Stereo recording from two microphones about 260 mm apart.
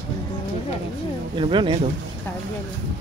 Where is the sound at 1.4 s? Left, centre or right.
Centre.